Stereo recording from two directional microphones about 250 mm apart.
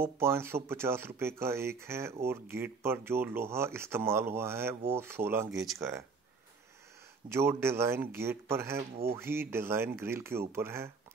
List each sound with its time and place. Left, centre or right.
0.0 s speech: centre
7.2 s speech: centre